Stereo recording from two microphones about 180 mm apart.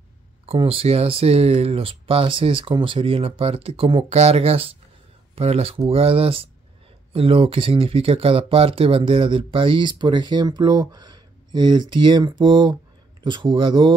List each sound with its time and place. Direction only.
0.5 s speech: 30° right (ahead or behind)